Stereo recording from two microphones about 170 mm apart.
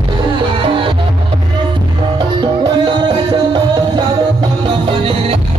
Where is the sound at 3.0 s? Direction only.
25° right (ahead or behind).